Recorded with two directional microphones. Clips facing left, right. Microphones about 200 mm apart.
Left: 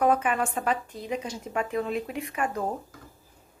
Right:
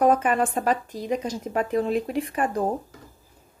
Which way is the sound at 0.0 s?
40° right (ahead or behind).